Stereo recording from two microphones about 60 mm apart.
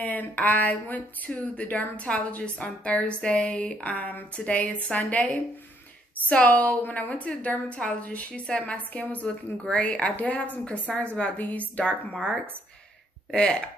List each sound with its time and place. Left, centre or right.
0.0 s a woman's voice: left
6.2 s a woman's voice: left